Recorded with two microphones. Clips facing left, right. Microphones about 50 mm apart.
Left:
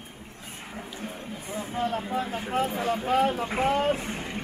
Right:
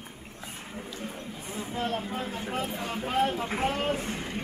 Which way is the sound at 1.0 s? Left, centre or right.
Left.